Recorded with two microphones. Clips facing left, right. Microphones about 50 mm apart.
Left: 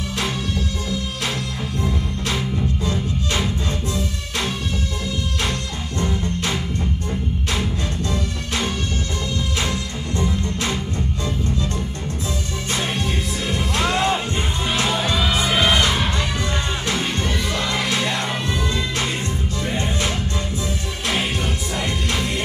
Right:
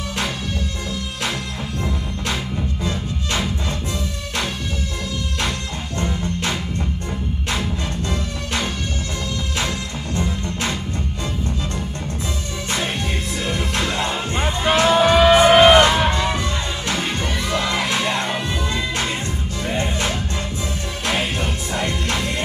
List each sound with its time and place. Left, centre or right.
9.6 s music: right
14.6 s music: right
17.6 s music: right
19.6 s music: right